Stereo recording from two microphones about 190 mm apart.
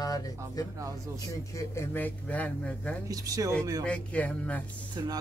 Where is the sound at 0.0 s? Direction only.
20° left (ahead or behind).